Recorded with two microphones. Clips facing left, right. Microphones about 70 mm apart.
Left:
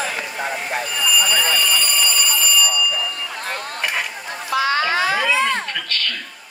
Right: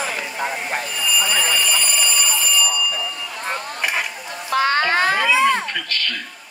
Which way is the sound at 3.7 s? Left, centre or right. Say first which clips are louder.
Even; centre.